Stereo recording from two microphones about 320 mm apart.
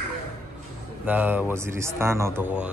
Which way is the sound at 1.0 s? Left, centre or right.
Centre.